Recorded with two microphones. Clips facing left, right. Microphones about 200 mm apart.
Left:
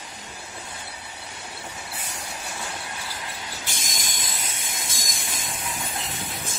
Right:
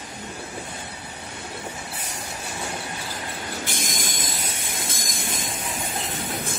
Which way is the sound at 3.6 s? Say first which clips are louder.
Right 6 dB; 55° right (ahead or behind).